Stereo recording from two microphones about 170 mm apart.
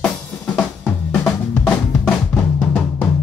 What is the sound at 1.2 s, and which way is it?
Drum, 5° left (ahead or behind).